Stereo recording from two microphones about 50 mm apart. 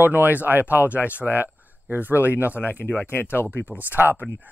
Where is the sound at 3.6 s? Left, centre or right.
Right.